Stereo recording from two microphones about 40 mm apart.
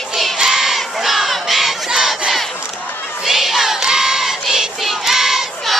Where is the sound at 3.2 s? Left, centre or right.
Centre.